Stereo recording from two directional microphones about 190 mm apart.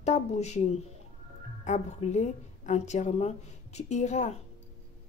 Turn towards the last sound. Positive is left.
turn(degrees=40)  # may be behind; listen again after turning